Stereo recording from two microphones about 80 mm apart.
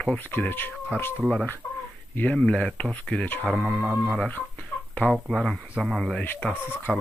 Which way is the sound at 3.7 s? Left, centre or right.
Centre.